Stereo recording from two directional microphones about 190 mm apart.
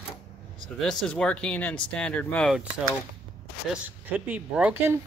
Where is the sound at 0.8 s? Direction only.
5° left (ahead or behind).